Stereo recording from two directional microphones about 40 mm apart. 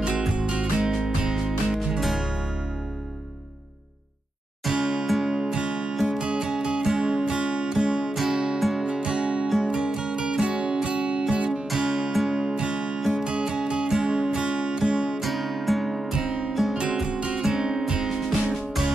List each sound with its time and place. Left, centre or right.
0.3 s music: right
0.8 s music: centre
2.0 s music: centre
4.6 s music: centre
5.6 s music: right
8.1 s music: centre
8.8 s music: right
11.7 s music: centre
12.5 s music: right
15.2 s music: centre
16.1 s music: centre
17.1 s music: right
17.4 s music: centre